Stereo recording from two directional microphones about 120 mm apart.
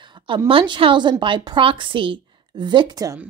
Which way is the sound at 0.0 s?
40° right (ahead or behind).